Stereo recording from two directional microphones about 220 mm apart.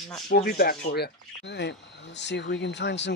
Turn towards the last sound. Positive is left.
turn(degrees=50)  # may be behind; listen again after turning